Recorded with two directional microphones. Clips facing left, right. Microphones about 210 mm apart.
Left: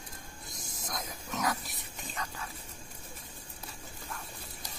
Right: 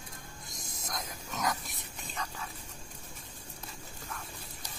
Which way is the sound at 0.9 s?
Centre (ahead or behind).